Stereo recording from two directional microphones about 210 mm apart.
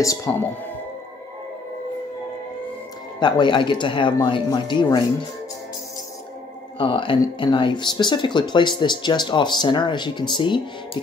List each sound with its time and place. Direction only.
0.0 s speech: 15° left (ahead or behind)
3.2 s speech: 20° left (ahead or behind)
6.8 s speech: 25° left (ahead or behind)